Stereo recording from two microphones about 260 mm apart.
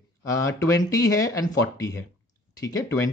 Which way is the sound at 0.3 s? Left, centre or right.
Centre.